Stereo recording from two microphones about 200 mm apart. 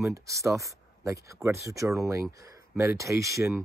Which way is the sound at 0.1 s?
15° right (ahead or behind).